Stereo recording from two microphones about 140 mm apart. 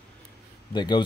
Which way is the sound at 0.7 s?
35° left (ahead or behind).